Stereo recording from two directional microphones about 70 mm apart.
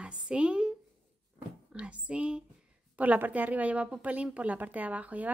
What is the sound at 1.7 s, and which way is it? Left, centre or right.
A woman's voice, centre.